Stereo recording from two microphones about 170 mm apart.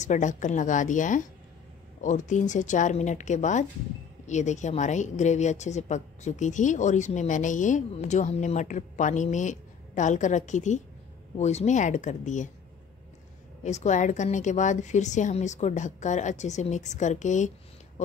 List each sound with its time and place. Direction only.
0.0 s a woman's voice: 45° left (ahead or behind)
13.7 s a woman's voice: 45° left (ahead or behind)